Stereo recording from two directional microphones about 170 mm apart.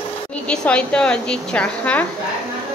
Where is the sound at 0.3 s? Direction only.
5° left (ahead or behind).